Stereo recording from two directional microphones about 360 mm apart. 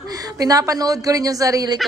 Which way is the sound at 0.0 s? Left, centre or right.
Centre.